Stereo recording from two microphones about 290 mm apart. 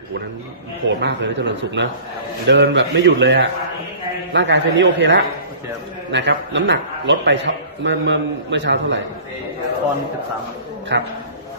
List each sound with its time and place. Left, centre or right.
0.8 s a man's voice: right
10.9 s a man's voice: right